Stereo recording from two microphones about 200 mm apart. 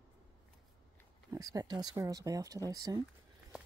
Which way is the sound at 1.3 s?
20° right (ahead or behind).